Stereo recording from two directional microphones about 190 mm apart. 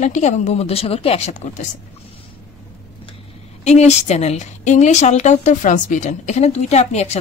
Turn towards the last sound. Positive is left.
turn(degrees=35)  # may be behind; listen again after turning